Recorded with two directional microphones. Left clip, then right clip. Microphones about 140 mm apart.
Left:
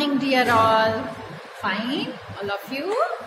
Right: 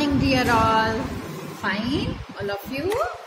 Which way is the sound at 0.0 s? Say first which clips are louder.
Left 1 dB; 35° right (ahead or behind).